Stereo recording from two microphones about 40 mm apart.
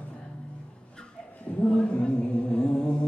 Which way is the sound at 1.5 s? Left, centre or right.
Left.